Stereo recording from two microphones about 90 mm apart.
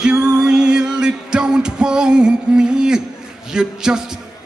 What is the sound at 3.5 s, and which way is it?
Speech, 5° right (ahead or behind).